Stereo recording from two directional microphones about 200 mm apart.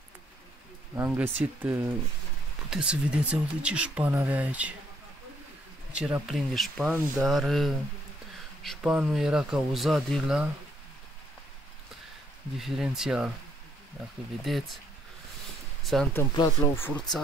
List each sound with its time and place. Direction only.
0.9 s speech: 10° right (ahead or behind)
5.9 s speech: 5° right (ahead or behind)
12.5 s speech: centre (ahead or behind)
14.4 s speech: centre (ahead or behind)
15.8 s speech: centre (ahead or behind)
16.2 s speech: 20° left (ahead or behind)